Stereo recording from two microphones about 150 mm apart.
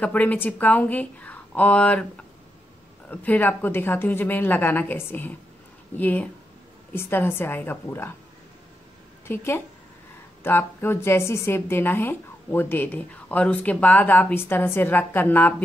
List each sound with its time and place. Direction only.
0.0 s a woman's voice: 10° left (ahead or behind)
3.1 s a woman's voice: 10° left (ahead or behind)
9.3 s a woman's voice: 15° left (ahead or behind)